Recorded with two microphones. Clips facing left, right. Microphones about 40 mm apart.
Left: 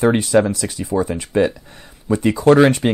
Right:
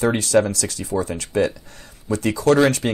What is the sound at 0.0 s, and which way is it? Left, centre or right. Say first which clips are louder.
Speech: left 3 dB; left.